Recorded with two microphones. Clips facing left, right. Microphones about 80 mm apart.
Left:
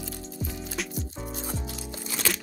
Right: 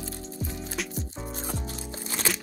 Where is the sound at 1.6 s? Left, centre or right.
Right.